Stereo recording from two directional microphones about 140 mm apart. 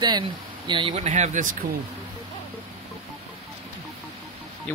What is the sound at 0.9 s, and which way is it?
Speech, 55° right (ahead or behind).